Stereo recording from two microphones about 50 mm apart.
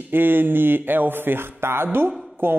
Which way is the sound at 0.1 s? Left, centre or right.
Right.